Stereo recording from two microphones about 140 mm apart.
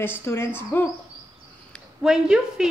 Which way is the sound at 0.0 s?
15° left (ahead or behind).